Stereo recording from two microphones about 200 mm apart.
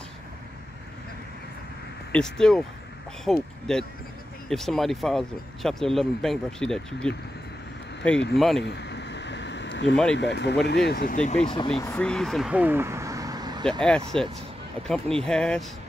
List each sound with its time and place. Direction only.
2.1 s speech: 5° left (ahead or behind)
8.6 s a sound: 60° left (ahead or behind)
10.1 s speech: 60° left (ahead or behind); by 11.4 s 35° left (ahead or behind)
11.4 s speech: 25° left (ahead or behind)
11.8 s speech: 10° left (ahead or behind); by 13.7 s 20° right (ahead or behind)
13.7 s speech: 5° left (ahead or behind)
15.2 s speech: 5° left (ahead or behind)